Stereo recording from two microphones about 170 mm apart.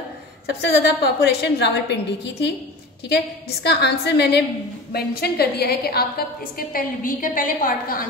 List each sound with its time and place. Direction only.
0.5 s a woman's voice: 75° left (ahead or behind)
3.1 s a woman's voice: 75° left (ahead or behind)
4.9 s a woman's voice: 65° left (ahead or behind)
6.7 s a woman's voice: 55° left (ahead or behind)